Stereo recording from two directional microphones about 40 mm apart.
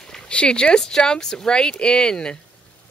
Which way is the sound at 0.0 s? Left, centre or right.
Centre.